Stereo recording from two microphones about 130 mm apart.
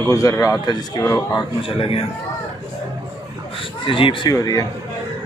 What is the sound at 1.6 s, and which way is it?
Speech, 45° left (ahead or behind).